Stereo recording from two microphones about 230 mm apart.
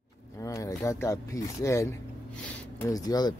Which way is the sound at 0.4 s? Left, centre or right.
Centre.